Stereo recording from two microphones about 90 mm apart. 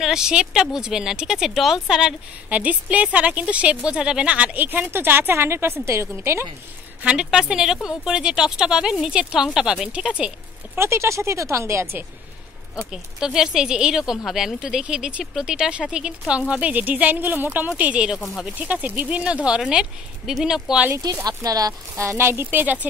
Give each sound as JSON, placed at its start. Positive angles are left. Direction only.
{"t": 0.0, "sound": "speech", "side_deg": -5}
{"t": 7.0, "sound": "speech", "side_deg": -10}
{"t": 10.8, "sound": "speech", "side_deg": -30}
{"t": 12.9, "sound": "speech", "side_deg": -5}
{"t": 18.2, "sound": "speech", "side_deg": 0}
{"t": 18.6, "sound": "speech", "side_deg": -20}
{"t": 20.9, "sound": "speech", "side_deg": -40}